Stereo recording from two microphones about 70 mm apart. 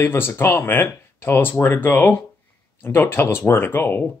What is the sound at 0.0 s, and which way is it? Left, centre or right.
Speech, left.